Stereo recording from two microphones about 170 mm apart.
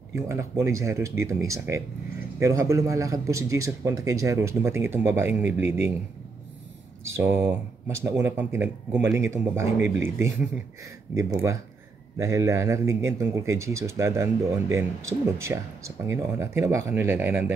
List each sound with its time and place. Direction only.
0.1 s speech: 15° right (ahead or behind)
7.2 s speech: 15° right (ahead or behind)